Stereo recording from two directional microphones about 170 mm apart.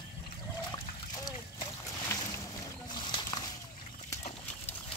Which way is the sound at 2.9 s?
25° left (ahead or behind).